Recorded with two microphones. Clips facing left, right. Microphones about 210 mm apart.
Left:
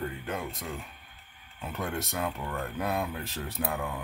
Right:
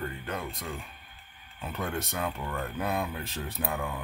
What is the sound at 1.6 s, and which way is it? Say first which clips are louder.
Speech: even; centre (ahead or behind).